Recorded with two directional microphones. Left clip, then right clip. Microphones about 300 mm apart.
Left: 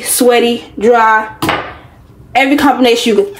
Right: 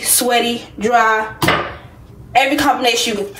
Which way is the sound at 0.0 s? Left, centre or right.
Left.